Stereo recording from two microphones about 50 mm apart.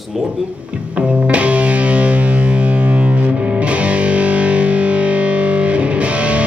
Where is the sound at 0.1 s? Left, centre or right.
Centre.